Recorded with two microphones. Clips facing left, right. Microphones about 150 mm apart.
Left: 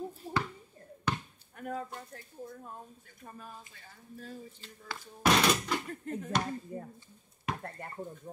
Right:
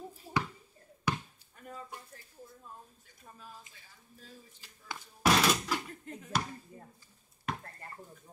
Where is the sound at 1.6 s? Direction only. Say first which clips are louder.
Left 9 dB; 65° left (ahead or behind).